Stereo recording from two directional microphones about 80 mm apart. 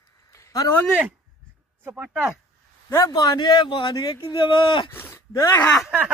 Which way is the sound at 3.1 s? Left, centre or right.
Left.